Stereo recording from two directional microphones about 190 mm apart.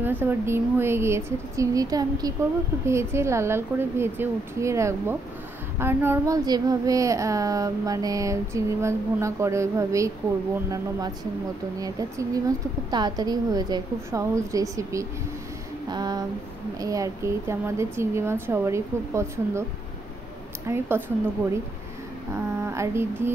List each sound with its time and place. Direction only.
0.0 s speech: 10° right (ahead or behind)
11.8 s a woman's voice: 20° right (ahead or behind)
20.6 s speech: 10° right (ahead or behind)
22.6 s speech: 15° right (ahead or behind)